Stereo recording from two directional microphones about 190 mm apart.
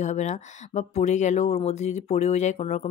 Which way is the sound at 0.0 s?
40° left (ahead or behind).